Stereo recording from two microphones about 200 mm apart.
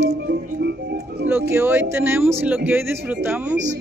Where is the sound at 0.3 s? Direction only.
55° right (ahead or behind).